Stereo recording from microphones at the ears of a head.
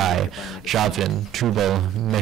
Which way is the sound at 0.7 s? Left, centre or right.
Right.